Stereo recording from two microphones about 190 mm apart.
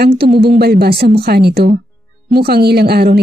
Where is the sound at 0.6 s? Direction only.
55° right (ahead or behind).